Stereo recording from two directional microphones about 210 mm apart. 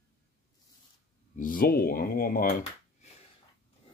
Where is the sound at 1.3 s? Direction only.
40° left (ahead or behind).